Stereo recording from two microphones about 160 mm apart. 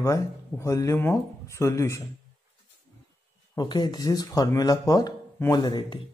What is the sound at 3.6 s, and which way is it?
Speech, 25° left (ahead or behind).